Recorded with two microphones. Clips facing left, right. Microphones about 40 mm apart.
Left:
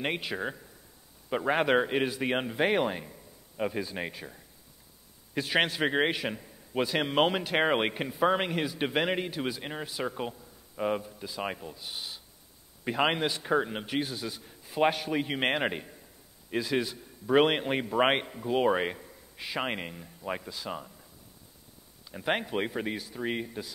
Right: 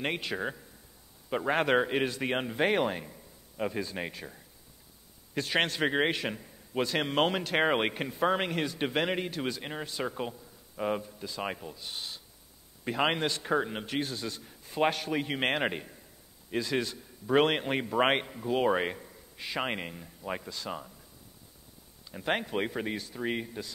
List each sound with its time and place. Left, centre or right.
0.0 s a man's voice: centre
22.1 s a man's voice: centre